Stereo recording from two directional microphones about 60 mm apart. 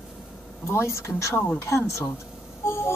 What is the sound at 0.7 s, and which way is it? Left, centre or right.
Speech, left.